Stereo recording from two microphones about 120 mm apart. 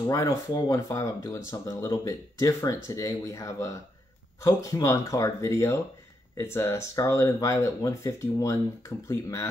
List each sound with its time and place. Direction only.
0.1 s speech: 25° left (ahead or behind)